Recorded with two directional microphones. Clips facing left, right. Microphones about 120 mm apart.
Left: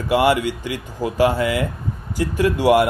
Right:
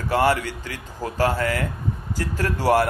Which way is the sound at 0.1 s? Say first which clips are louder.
Left 4 dB; 15° left (ahead or behind).